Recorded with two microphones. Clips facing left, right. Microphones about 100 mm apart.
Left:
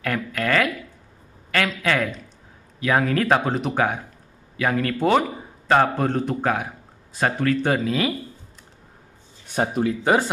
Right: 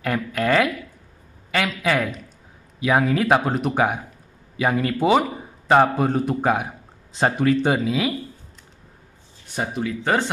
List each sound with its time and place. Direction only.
0.0 s a sound: 20° right (ahead or behind)
2.8 s a man's voice: 10° right (ahead or behind)
3.7 s a man's voice: 15° right (ahead or behind)
10.0 s speech: 10° left (ahead or behind)